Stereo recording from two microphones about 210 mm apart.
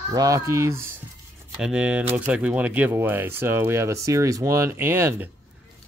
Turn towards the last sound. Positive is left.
turn(degrees=-10)  # may be behind; listen again after turning